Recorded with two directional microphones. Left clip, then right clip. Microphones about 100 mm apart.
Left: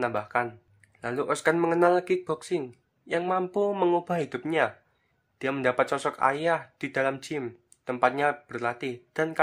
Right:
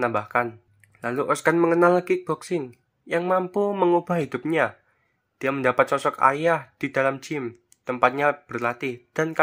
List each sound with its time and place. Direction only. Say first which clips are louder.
0.0 s speech: right 4 dB; 35° right (ahead or behind)
3.3 s speech: right 4 dB; 20° right (ahead or behind)
4.0 s speech: right 3 dB; 30° right (ahead or behind)